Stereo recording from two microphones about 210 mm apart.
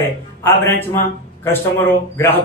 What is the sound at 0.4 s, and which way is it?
A man's voice, 10° left (ahead or behind).